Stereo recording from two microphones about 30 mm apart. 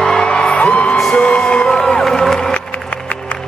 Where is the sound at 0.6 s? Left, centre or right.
Left.